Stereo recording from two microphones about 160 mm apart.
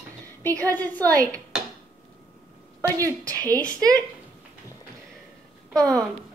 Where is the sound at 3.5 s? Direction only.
5° left (ahead or behind).